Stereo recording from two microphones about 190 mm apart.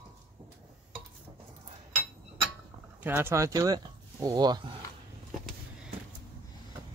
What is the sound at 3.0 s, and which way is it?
Speech, 10° right (ahead or behind).